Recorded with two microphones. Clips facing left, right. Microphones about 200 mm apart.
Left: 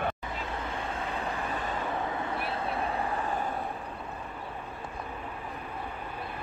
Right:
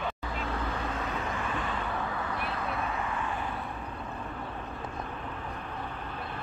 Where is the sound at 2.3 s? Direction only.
30° left (ahead or behind).